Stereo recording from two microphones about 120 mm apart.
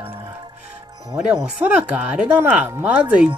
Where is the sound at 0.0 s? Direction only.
15° right (ahead or behind).